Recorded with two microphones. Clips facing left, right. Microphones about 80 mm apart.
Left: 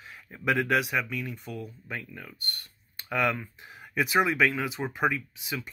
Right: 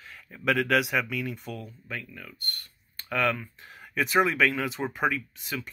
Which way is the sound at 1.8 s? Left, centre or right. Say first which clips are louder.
Even; centre.